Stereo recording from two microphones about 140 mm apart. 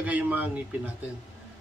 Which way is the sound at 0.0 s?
10° right (ahead or behind).